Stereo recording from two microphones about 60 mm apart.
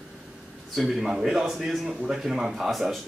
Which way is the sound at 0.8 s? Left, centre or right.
Centre.